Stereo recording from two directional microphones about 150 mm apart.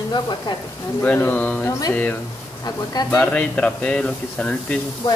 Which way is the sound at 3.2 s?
10° left (ahead or behind).